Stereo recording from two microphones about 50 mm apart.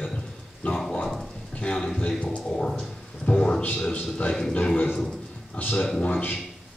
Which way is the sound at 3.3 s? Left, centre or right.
Centre.